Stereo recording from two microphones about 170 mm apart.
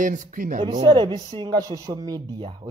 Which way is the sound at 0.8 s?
25° right (ahead or behind).